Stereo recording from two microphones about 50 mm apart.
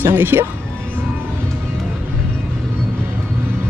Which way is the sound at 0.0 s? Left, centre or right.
Right.